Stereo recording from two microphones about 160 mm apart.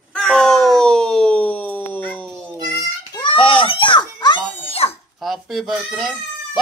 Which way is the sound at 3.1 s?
30° left (ahead or behind).